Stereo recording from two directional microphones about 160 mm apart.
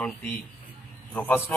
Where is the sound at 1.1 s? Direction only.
10° left (ahead or behind).